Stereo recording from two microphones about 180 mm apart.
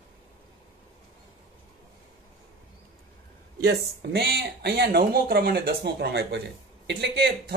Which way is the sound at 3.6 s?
60° right (ahead or behind).